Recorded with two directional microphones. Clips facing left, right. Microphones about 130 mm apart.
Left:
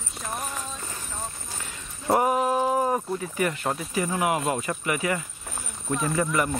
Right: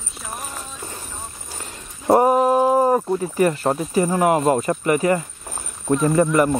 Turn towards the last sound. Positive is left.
turn(degrees=-45)  # may be behind; listen again after turning